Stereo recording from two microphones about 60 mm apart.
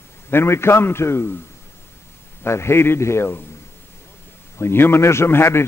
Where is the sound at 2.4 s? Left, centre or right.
Left.